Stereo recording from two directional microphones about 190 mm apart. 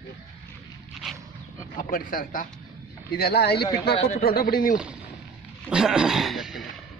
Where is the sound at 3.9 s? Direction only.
35° left (ahead or behind).